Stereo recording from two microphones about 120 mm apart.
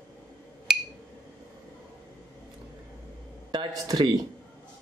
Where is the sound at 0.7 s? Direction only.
5° right (ahead or behind).